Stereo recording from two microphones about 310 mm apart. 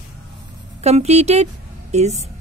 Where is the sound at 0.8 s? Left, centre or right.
Right.